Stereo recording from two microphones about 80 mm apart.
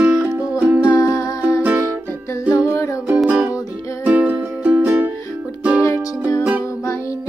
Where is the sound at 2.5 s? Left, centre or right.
Left.